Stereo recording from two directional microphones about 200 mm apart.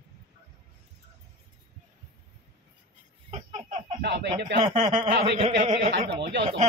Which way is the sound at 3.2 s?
35° right (ahead or behind).